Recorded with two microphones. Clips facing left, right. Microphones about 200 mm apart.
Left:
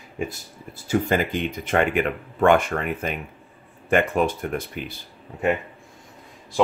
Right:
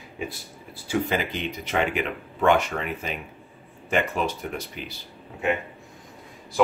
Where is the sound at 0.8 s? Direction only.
45° left (ahead or behind).